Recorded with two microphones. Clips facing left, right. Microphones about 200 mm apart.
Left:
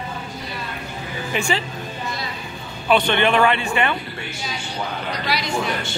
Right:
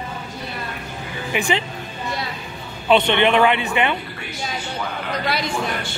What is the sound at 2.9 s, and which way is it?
Speech, 25° right (ahead or behind).